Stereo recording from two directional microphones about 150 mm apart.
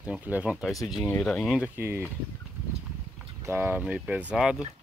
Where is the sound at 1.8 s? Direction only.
15° right (ahead or behind).